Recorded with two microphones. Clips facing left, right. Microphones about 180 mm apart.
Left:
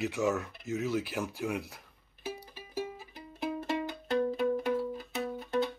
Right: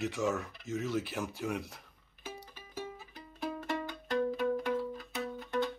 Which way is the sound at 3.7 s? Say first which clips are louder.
Left 3 dB; 25° left (ahead or behind).